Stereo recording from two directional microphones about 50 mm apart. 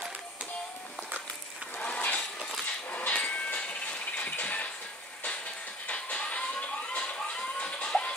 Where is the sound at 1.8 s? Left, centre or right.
Left.